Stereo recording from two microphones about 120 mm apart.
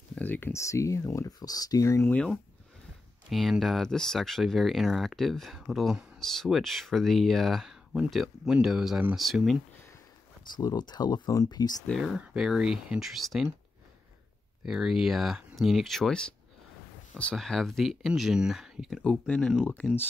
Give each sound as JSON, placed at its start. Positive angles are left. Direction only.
{"t": 0.1, "sound": "speech", "side_deg": 15}
{"t": 3.3, "sound": "speech", "side_deg": 0}
{"t": 10.6, "sound": "speech", "side_deg": 35}
{"t": 12.0, "sound": "speech", "side_deg": -5}
{"t": 14.6, "sound": "speech", "side_deg": -5}